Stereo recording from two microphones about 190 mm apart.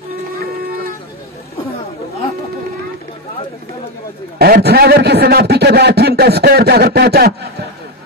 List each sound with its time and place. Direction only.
4.4 s a man's voice: 55° right (ahead or behind)